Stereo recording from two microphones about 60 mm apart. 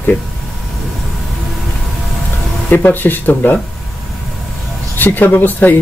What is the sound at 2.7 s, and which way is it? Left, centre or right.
Speech, left.